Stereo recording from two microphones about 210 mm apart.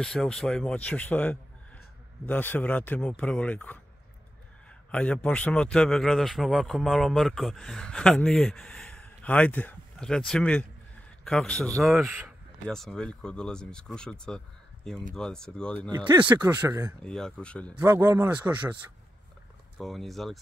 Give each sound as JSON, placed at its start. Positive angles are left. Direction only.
{"t": 0.0, "sound": "a man's voice", "side_deg": 0}
{"t": 4.9, "sound": "a man's voice", "side_deg": 5}
{"t": 12.0, "sound": "a man's voice", "side_deg": -10}
{"t": 12.6, "sound": "a man's voice", "side_deg": 0}
{"t": 15.9, "sound": "a man's voice", "side_deg": -20}
{"t": 17.0, "sound": "a man's voice", "side_deg": 5}
{"t": 17.7, "sound": "a man's voice", "side_deg": -10}
{"t": 19.8, "sound": "a man's voice", "side_deg": 0}